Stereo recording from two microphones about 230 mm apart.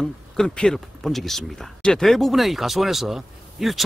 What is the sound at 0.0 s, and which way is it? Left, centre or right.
Speech, centre.